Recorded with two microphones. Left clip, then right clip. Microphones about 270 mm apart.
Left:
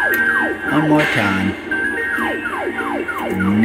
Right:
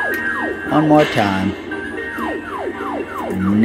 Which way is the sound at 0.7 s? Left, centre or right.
Centre.